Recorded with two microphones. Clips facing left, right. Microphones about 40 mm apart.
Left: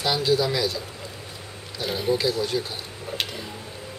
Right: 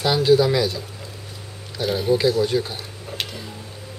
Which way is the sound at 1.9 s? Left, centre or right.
Centre.